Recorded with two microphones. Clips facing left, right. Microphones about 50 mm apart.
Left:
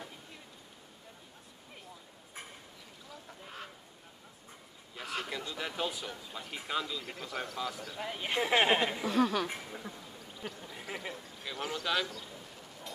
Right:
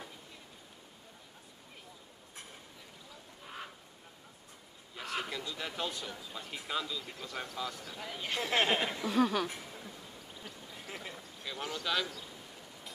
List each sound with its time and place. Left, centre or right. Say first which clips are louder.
3.4 s duck: right 2 dB; centre
4.9 s a sound: even; centre
5.6 s a man's voice: left 4 dB; centre
8.0 s speech: left 4 dB; centre
9.0 s a man's voice: even; centre
9.5 s speech: left 4 dB; left
10.4 s a sound: left 6 dB; centre